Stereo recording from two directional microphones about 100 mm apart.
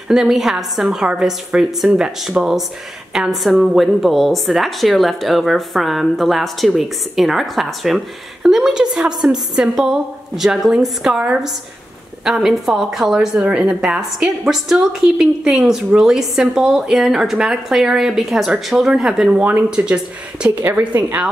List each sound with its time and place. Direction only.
0.1 s a woman's voice: 5° right (ahead or behind)